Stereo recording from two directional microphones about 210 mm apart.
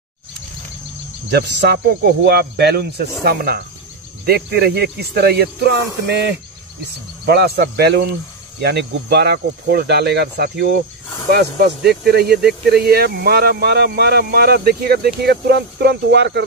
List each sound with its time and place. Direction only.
1.5 s speech: 50° right (ahead or behind)